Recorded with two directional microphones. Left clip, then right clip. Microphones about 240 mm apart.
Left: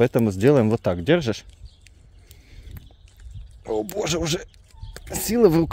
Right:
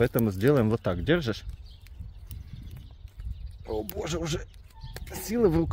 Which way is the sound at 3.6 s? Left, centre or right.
Left.